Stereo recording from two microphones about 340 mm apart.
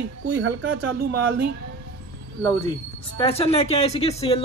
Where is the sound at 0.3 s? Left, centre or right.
Right.